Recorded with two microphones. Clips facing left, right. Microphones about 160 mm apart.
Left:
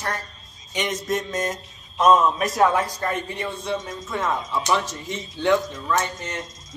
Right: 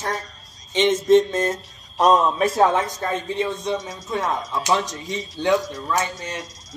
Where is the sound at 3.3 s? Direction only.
20° right (ahead or behind).